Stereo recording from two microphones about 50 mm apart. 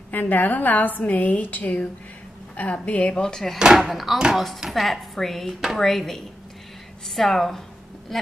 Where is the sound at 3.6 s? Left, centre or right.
Centre.